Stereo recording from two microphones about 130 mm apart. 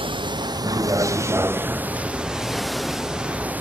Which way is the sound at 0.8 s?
25° right (ahead or behind).